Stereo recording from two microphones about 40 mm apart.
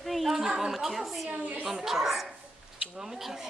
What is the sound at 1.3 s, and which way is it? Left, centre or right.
Speech, right.